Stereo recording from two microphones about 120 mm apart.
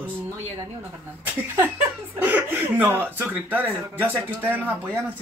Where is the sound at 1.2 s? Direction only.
20° right (ahead or behind).